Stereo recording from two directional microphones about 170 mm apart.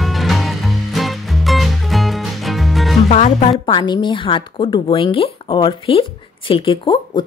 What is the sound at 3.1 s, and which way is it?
Speech, 45° left (ahead or behind).